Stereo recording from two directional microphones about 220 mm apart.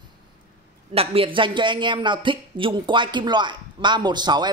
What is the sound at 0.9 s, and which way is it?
Speech, 25° right (ahead or behind).